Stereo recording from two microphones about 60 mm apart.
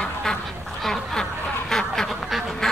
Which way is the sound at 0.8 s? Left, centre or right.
Centre.